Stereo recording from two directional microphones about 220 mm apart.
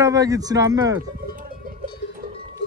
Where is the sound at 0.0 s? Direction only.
15° right (ahead or behind).